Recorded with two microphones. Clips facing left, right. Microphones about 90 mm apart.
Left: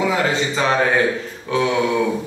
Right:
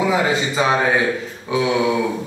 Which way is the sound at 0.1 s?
15° right (ahead or behind).